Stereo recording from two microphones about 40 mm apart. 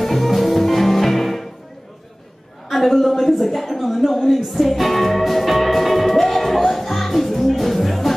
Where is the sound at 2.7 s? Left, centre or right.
Centre.